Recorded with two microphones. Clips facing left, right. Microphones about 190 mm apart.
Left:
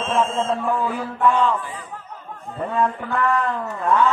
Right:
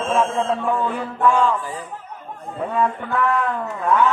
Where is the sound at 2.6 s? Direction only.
Centre (ahead or behind).